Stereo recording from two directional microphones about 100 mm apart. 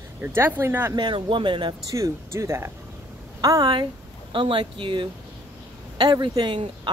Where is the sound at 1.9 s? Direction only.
30° right (ahead or behind).